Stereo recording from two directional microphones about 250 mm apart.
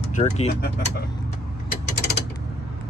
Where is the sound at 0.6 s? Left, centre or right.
Left.